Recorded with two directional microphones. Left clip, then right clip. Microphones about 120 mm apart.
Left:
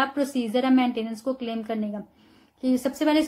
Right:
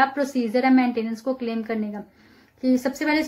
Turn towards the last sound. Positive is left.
turn(degrees=25)  # may be behind; listen again after turning